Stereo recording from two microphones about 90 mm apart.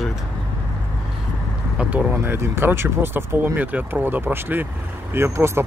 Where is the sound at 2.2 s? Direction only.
25° right (ahead or behind).